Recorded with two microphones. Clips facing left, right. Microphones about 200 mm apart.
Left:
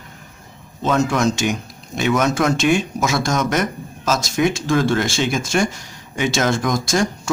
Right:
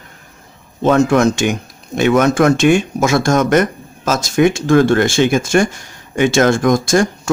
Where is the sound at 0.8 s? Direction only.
55° right (ahead or behind).